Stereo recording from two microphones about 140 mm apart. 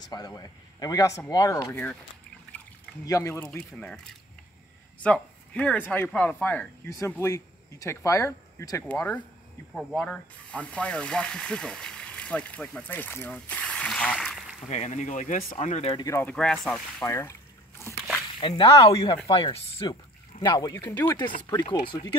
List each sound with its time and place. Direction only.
0.0 s a man's voice: 30° left (ahead or behind)
3.1 s a man's voice: 20° left (ahead or behind)
3.4 s speech: 10° left (ahead or behind)
9.8 s speech: centre (ahead or behind)
10.0 s speech: 10° left (ahead or behind)
14.7 s speech: 55° left (ahead or behind)
16.0 s a man's voice: 20° left (ahead or behind)
16.3 s speech: 5° left (ahead or behind)
17.0 s a sound: 20° left (ahead or behind)
18.4 s speech: 35° left (ahead or behind)
20.3 s a man's voice: 30° left (ahead or behind)
20.9 s speech: 15° left (ahead or behind)
21.2 s speech: 30° left (ahead or behind)